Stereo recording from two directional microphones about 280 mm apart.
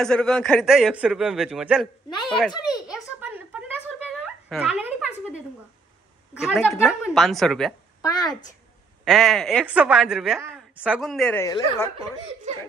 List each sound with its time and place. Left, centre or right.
0.0 s a woman's voice: centre
3.2 s a sound: centre
6.4 s a woman's voice: centre
8.0 s a child's voice: centre
9.0 s a woman's voice: centre